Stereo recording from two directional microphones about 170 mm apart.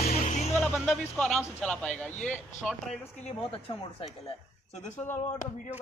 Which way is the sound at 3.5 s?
30° left (ahead or behind).